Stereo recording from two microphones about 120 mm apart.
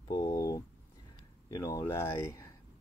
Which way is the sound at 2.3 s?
25° left (ahead or behind).